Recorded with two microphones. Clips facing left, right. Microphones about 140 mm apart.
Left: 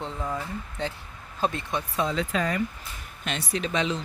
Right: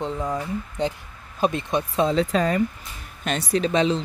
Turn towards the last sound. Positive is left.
turn(degrees=-35)  # may be behind; listen again after turning